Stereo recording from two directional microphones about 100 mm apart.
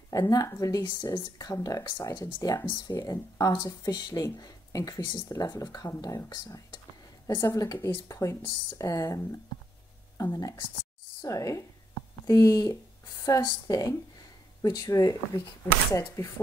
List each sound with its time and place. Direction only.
0.1 s speech: 35° left (ahead or behind)
2.9 s speech: 35° left (ahead or behind)